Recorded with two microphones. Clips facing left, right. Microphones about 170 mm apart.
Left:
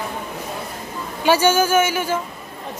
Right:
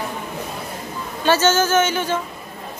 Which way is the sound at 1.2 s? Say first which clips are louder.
Left 1 dB; 10° left (ahead or behind).